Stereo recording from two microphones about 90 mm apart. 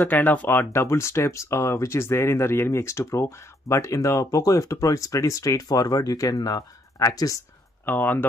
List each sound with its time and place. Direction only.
0.0 s speech: 20° left (ahead or behind); by 7.4 s 35° left (ahead or behind)
7.8 s speech: 20° left (ahead or behind)